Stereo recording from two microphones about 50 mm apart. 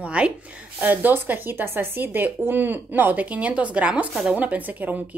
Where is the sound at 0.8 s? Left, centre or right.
Right.